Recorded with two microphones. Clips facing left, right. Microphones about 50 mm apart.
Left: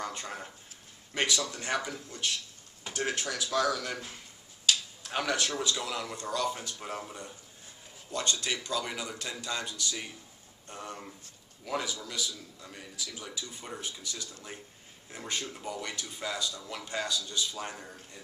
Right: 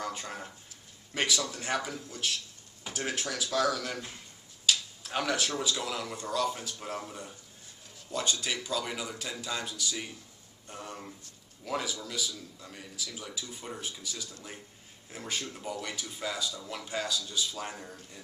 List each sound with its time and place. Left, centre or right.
0.0 s speech: centre
4.6 s a sound: centre
5.6 s speech: centre